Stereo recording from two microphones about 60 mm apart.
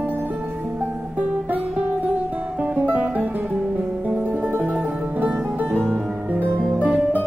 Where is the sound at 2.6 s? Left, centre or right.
Right.